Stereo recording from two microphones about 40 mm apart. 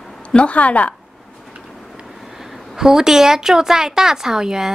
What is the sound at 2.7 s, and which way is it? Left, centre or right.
A woman's voice, centre.